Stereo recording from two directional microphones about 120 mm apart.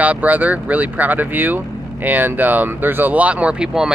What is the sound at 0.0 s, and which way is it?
Speech, 15° right (ahead or behind).